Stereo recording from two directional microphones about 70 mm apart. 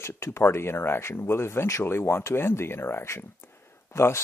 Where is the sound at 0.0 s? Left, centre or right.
Left.